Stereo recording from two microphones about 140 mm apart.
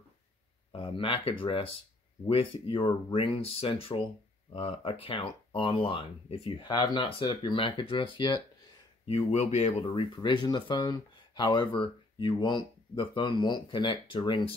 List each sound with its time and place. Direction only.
0.7 s speech: 40° left (ahead or behind)
9.0 s speech: 50° left (ahead or behind)
9.8 s speech: 35° left (ahead or behind)